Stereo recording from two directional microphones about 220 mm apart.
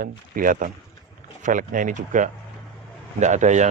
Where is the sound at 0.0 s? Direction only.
40° right (ahead or behind).